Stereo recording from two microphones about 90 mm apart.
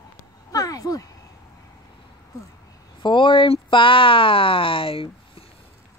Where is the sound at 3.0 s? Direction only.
65° left (ahead or behind); by 5.1 s 90° left.